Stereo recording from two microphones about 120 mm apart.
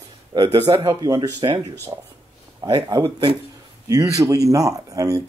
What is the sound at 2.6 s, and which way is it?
Speech, 35° right (ahead or behind).